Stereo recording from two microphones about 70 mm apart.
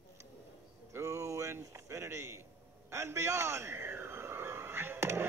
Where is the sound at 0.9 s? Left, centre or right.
Right.